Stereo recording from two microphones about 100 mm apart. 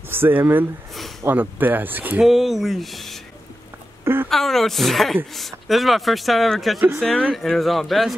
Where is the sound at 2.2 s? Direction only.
Centre (ahead or behind).